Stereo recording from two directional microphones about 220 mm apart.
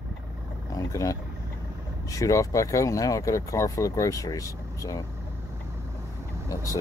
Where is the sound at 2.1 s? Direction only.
15° left (ahead or behind).